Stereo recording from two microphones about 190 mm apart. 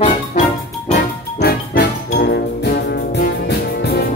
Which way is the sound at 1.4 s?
55° left (ahead or behind).